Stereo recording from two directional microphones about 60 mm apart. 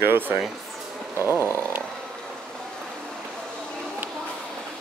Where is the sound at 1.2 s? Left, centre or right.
Right.